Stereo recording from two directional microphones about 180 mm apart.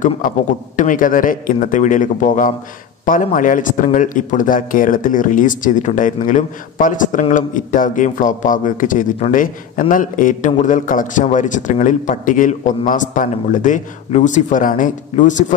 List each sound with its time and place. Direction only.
0.7 s a man's voice: 45° left (ahead or behind)